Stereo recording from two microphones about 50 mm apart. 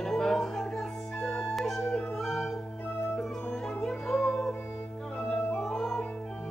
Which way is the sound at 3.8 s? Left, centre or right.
Centre.